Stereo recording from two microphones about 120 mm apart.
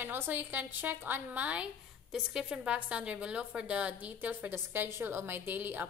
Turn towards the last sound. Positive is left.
turn(degrees=-15)  # may be behind; listen again after turning